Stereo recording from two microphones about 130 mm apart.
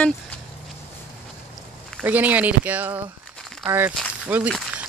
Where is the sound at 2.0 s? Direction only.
15° right (ahead or behind).